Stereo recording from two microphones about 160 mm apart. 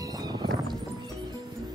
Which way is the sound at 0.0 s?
25° right (ahead or behind).